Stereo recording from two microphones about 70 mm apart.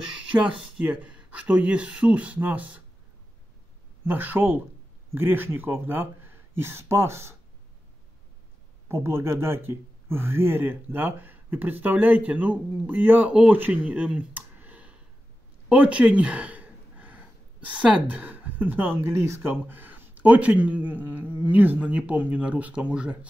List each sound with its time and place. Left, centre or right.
0.3 s speech: centre
4.0 s speech: right
8.8 s speech: right; by 23.1 s centre